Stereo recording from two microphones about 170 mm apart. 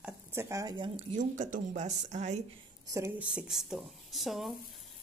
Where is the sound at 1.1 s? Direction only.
50° right (ahead or behind).